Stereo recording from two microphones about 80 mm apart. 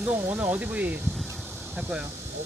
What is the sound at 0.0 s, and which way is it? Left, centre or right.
A man's voice, right.